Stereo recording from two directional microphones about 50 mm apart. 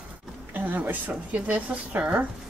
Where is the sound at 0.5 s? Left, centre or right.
Right.